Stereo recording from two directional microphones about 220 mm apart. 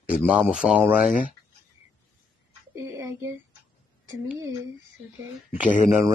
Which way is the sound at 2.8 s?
15° right (ahead or behind).